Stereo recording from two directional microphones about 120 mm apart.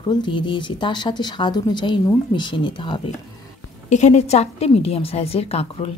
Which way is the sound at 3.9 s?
75° left (ahead or behind).